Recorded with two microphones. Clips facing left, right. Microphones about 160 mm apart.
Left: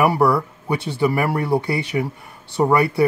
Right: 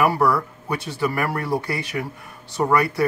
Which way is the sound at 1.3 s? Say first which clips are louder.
Left 4 dB; 25° left (ahead or behind).